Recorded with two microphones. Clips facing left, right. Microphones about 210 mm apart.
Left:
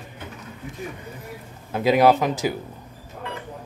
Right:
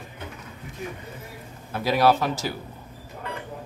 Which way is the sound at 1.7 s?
20° left (ahead or behind).